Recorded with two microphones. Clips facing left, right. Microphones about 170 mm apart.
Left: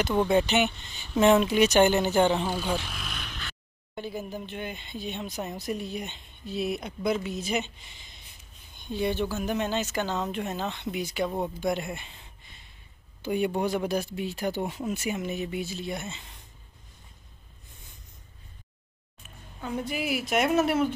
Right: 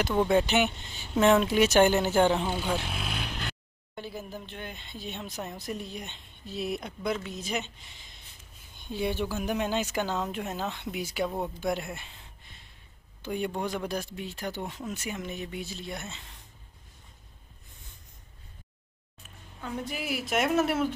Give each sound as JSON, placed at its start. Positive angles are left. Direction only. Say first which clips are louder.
{"t": 0.0, "sound": "speech", "louder": "left 1 dB", "side_deg": 0}
{"t": 1.1, "sound": "speech", "louder": "left 1 dB", "side_deg": 5}
{"t": 2.8, "sound": "vehicle", "louder": "right 4 dB", "side_deg": -25}
{"t": 3.9, "sound": "speech", "louder": "left 4 dB", "side_deg": 0}
{"t": 19.6, "sound": "speech", "louder": "left 4 dB", "side_deg": 0}